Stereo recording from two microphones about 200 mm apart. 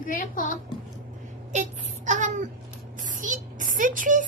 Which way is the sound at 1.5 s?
35° right (ahead or behind).